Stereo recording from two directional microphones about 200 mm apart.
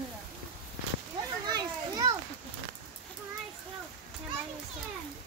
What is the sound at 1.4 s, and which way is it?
Children playing, 20° right (ahead or behind).